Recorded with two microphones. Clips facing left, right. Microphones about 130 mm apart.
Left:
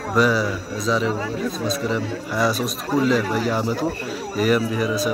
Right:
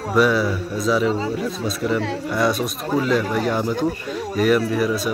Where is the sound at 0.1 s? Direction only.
Centre (ahead or behind).